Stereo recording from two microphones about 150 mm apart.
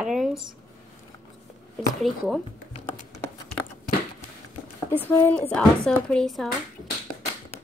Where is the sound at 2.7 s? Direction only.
45° left (ahead or behind).